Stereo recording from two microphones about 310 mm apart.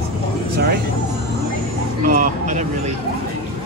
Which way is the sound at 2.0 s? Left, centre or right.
Right.